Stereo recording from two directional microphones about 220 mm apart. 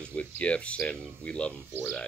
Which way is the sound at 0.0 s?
5° left (ahead or behind).